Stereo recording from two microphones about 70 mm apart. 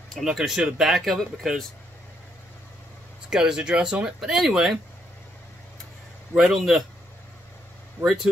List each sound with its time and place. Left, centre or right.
0.2 s speech: centre
3.3 s speech: centre
6.3 s speech: centre
8.0 s speech: centre